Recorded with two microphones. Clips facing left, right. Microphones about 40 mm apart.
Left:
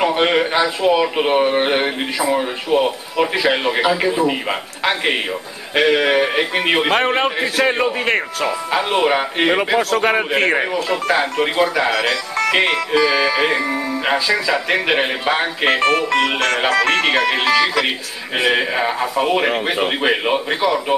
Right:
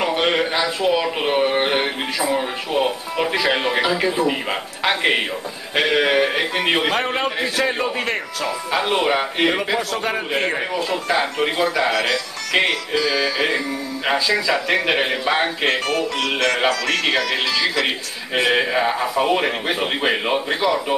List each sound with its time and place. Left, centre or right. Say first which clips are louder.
0.0 s speech: left 3 dB; centre
6.9 s speech: left 4 dB; left
8.7 s speech: left 2 dB; centre
9.8 s a man's voice: left 6 dB; left
10.6 s speech: left 3 dB; left
11.4 s speech: left 2 dB; centre
13.0 s speech: left 3 dB; left
15.8 s speech: left 6 dB; left
16.6 s speech: left 4 dB; left
17.8 s speech: left 2 dB; centre